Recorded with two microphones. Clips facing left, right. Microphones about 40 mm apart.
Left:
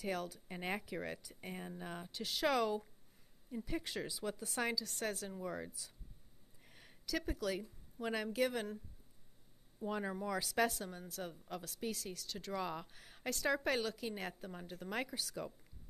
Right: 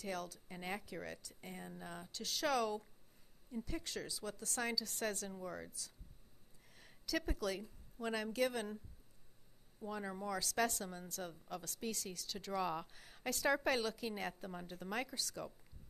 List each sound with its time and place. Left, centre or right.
0.0 s speech: centre
0.5 s speech: left
4.7 s a woman's voice: centre
6.7 s a sound: centre
8.0 s speech: centre
9.8 s speech: left
10.1 s a woman's voice: centre